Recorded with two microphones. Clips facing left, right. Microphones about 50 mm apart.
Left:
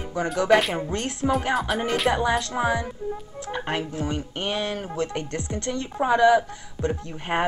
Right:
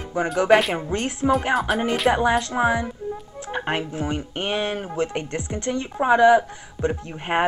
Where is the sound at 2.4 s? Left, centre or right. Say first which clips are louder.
Right 3 dB; centre.